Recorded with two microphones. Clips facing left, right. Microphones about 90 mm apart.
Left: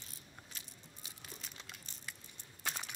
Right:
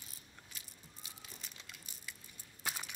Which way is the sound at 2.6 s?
10° right (ahead or behind).